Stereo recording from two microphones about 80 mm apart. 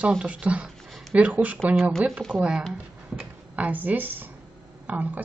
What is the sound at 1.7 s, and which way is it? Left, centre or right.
Speech, centre.